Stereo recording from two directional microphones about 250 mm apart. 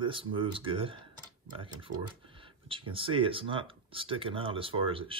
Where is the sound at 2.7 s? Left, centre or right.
Right.